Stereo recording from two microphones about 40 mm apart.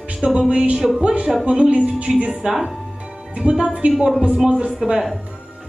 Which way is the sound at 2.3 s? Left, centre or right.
Centre.